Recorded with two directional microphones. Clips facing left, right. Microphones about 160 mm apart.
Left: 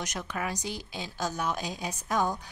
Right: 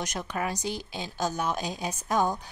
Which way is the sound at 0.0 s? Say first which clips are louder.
Right 3 dB; 30° right (ahead or behind).